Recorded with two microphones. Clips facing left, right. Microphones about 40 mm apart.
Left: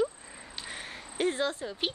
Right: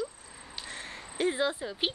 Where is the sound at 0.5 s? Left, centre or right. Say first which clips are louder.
Even; centre.